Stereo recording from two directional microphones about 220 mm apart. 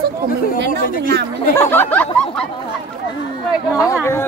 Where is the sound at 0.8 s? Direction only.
40° left (ahead or behind).